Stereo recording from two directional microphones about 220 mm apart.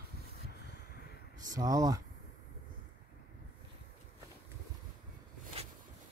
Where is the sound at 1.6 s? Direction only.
15° right (ahead or behind).